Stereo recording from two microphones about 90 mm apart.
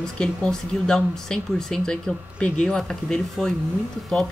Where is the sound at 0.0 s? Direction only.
10° left (ahead or behind).